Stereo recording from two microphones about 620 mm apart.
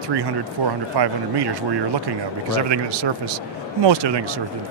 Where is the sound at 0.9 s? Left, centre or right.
Right.